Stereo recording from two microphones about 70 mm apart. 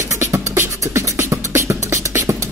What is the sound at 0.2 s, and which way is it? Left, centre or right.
Beatboxing, right.